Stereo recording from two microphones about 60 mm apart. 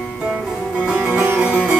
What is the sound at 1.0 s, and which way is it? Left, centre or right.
Music, right.